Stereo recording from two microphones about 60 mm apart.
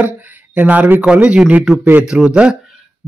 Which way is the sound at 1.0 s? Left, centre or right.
Centre.